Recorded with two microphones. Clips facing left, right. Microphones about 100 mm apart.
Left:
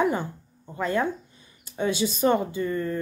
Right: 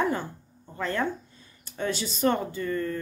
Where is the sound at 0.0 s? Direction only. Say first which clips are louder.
Left 3 dB; 15° left (ahead or behind).